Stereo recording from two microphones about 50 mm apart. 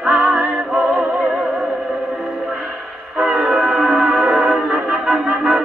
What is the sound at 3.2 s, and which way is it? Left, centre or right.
Music, centre.